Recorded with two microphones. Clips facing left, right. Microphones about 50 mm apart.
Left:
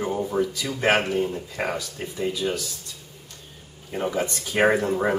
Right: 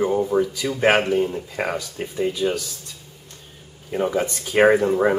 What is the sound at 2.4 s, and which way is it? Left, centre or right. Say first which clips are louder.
Speech: right 4 dB; centre.